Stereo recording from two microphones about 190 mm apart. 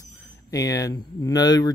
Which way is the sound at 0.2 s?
15° left (ahead or behind).